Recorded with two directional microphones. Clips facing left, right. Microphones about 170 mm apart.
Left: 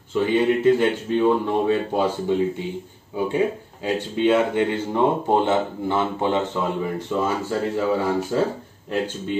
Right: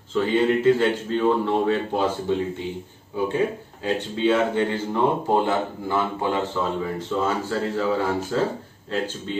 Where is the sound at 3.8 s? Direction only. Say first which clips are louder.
Left 2 dB; 20° left (ahead or behind).